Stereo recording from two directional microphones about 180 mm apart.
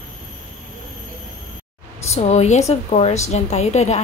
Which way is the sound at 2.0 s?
40° left (ahead or behind).